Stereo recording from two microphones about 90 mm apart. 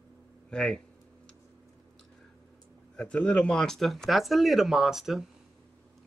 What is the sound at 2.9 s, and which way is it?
Speech, 10° left (ahead or behind).